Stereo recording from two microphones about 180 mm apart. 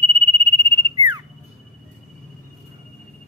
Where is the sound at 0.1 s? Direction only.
25° right (ahead or behind).